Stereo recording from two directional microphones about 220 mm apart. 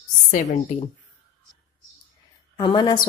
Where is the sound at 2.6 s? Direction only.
20° left (ahead or behind).